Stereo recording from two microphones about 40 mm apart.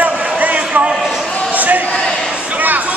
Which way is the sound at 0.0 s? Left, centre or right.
Right.